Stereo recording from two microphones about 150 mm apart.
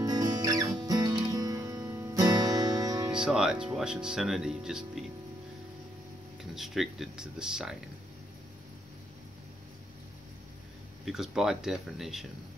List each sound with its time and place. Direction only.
0.0 s music: 25° right (ahead or behind)
3.1 s speech: 5° right (ahead or behind)
6.5 s speech: centre (ahead or behind)
11.1 s speech: 5° right (ahead or behind)